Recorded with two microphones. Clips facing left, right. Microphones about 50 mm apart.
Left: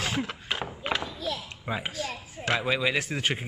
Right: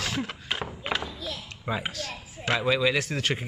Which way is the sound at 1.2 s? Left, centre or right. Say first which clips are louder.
Left 4 dB; left.